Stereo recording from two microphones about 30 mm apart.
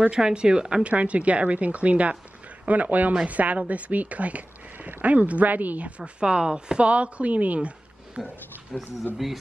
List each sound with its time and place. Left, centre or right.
0.1 s speech: right
0.8 s speech: right
2.6 s speech: right
5.9 s speech: right
8.2 s speech: right
8.7 s speech: centre